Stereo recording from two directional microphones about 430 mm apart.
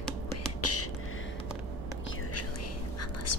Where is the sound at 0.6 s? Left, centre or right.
Left.